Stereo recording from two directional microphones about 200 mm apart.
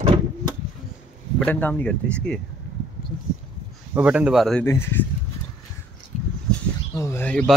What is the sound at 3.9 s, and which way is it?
Speech, 5° right (ahead or behind).